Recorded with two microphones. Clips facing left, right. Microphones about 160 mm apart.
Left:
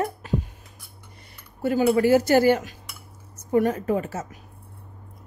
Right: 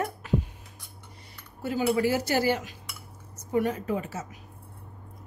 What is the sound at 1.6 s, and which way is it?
A woman's voice, 55° left (ahead or behind).